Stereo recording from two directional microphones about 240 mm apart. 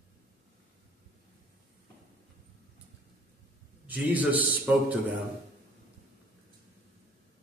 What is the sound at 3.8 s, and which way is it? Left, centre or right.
A man's voice, centre.